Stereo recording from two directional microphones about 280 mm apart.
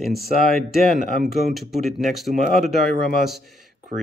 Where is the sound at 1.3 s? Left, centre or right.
Centre.